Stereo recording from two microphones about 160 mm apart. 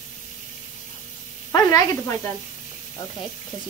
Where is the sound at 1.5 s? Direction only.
25° left (ahead or behind).